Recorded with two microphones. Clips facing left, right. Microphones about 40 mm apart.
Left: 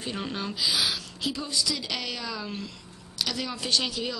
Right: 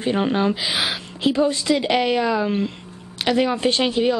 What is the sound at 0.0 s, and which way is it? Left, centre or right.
A woman's voice, right.